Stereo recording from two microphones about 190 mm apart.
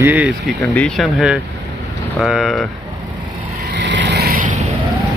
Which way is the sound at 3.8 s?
65° right (ahead or behind).